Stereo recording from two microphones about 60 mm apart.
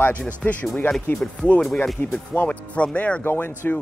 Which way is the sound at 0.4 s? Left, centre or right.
Left.